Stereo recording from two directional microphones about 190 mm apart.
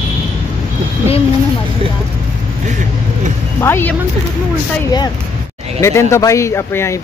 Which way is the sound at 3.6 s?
10° left (ahead or behind).